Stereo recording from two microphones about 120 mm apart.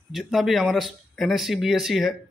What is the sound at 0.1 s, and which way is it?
Speech, centre (ahead or behind).